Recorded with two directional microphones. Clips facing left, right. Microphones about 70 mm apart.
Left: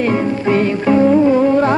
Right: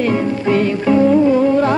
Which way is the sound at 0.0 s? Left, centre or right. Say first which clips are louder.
Left 1 dB; left.